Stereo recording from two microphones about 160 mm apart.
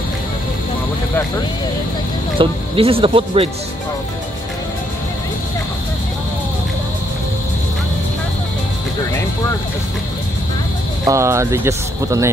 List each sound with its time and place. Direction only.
2.3 s speech: 35° right (ahead or behind)
11.1 s speech: 20° right (ahead or behind)